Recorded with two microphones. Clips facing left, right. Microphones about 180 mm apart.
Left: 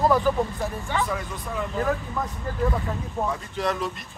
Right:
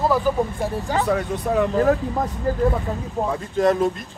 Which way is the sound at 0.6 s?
40° right (ahead or behind).